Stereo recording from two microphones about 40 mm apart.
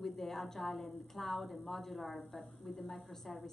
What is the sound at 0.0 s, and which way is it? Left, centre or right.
A woman's voice, centre.